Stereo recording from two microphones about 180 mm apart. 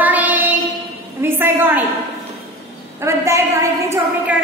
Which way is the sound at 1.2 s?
10° right (ahead or behind).